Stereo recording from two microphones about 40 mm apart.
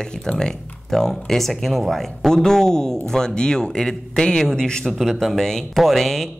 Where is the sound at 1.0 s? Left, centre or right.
Centre.